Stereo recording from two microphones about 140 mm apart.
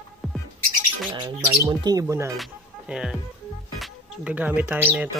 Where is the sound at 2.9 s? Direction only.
5° right (ahead or behind).